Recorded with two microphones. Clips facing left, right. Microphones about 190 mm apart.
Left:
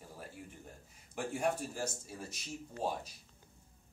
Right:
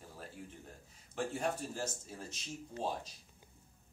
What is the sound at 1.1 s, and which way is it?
Speech, 10° left (ahead or behind).